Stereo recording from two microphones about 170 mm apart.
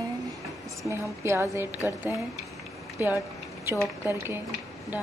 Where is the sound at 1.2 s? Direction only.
15° right (ahead or behind).